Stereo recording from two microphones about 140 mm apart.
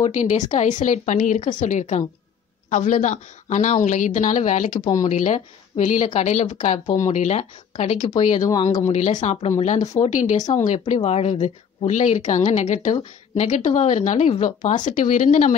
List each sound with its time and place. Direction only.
0.0 s speech: 60° left (ahead or behind)
8.4 s speech: 25° left (ahead or behind)
8.8 s speech: 55° left (ahead or behind)
11.0 s speech: 50° left (ahead or behind)